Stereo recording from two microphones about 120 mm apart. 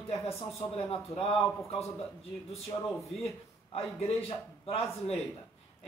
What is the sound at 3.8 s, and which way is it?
A man's voice, 55° left (ahead or behind).